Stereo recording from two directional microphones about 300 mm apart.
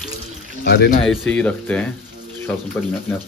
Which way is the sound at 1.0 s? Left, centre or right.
Centre.